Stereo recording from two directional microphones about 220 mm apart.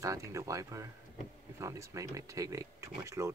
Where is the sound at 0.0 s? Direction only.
15° right (ahead or behind).